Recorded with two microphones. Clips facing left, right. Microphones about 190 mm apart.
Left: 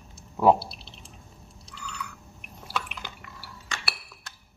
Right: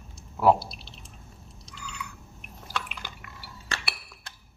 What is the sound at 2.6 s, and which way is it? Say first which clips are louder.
Liquid: left 2 dB; centre (ahead or behind).